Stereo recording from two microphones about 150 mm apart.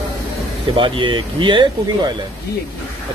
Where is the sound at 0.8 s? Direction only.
35° right (ahead or behind).